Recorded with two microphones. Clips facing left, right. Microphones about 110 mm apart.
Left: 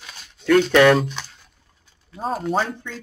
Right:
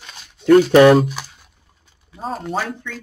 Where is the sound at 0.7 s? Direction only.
30° right (ahead or behind).